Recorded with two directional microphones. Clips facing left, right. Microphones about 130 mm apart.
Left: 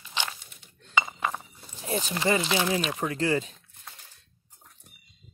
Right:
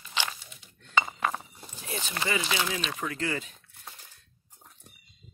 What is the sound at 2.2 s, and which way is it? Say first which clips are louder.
Speech: left 4 dB; 25° left (ahead or behind).